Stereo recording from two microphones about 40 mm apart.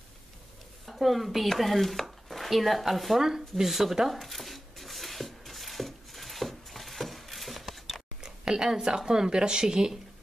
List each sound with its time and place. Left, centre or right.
0.8 s speech: centre
4.2 s a sound: centre
8.2 s speech: centre